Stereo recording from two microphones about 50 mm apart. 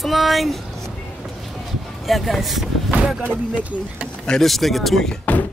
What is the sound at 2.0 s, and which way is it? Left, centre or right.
Speech, centre.